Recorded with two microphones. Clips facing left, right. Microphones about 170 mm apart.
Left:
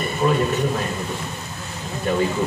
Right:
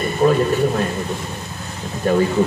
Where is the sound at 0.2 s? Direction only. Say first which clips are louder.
Right 5 dB; 40° right (ahead or behind).